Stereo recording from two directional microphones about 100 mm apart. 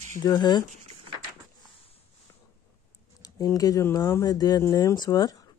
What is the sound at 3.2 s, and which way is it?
Speech, 35° left (ahead or behind).